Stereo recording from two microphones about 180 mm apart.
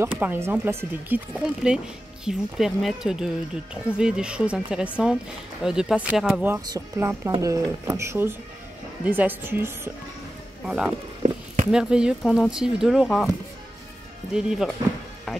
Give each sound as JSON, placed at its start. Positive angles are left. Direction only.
{"t": 0.0, "sound": "speech", "side_deg": -10}
{"t": 11.2, "sound": "a sound", "side_deg": -40}
{"t": 11.7, "sound": "speech", "side_deg": -5}
{"t": 14.3, "sound": "speech", "side_deg": 0}